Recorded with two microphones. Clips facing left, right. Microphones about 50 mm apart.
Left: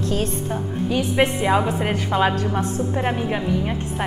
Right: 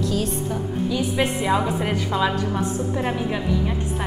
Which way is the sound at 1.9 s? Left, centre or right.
Left.